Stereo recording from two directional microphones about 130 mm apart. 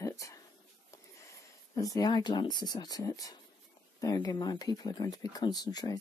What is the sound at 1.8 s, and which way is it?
Speech, 30° left (ahead or behind).